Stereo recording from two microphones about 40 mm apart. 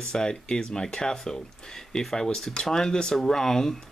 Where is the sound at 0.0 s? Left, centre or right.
Centre.